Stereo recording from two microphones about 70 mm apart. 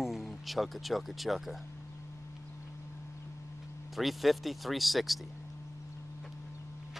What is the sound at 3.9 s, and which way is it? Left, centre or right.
Speech, centre.